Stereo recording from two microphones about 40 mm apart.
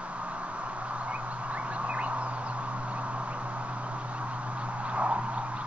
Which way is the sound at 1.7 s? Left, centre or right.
Right.